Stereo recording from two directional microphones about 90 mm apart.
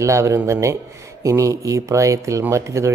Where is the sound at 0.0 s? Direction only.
35° right (ahead or behind).